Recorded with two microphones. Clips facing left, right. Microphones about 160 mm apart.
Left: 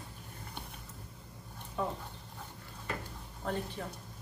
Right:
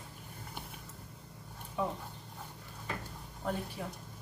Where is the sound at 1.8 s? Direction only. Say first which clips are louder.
Right 1 dB; 5° right (ahead or behind).